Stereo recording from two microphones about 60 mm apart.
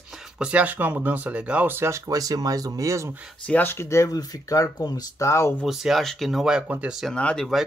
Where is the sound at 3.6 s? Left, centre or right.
Left.